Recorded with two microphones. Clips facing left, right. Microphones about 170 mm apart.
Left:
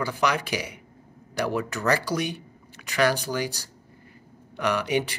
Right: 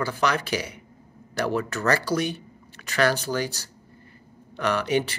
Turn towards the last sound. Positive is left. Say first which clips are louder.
# right 1 dB
turn(degrees=15)  # may be behind; listen again after turning